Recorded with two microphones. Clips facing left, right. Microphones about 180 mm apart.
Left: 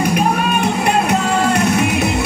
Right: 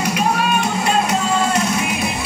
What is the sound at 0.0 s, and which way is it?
Music, 55° left (ahead or behind).